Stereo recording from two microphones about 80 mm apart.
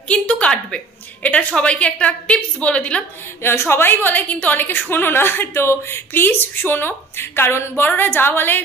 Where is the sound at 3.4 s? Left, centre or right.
Left.